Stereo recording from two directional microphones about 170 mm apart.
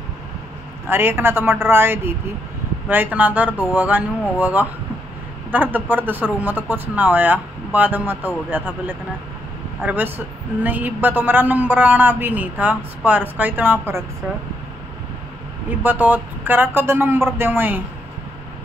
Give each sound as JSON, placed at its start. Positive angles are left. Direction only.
{"t": 0.8, "sound": "a man's voice", "side_deg": -15}
{"t": 15.8, "sound": "a man's voice", "side_deg": -10}